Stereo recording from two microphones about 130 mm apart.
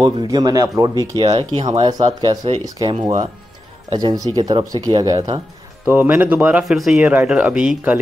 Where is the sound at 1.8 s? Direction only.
30° right (ahead or behind).